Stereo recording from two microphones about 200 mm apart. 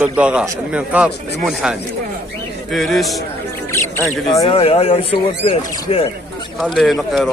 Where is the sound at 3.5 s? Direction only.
10° left (ahead or behind).